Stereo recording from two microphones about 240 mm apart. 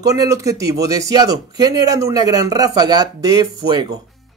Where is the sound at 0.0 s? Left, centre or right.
Centre.